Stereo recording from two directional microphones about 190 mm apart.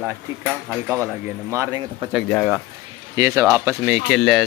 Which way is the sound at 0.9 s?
15° right (ahead or behind).